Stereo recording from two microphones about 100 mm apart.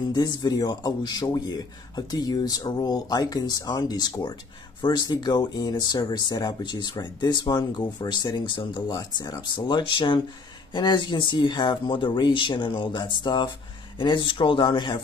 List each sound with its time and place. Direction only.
0.1 s speech: 45° left (ahead or behind)